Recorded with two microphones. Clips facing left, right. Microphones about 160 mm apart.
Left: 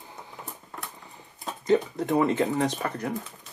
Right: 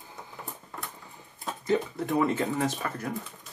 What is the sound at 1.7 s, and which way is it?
Speech, 20° left (ahead or behind).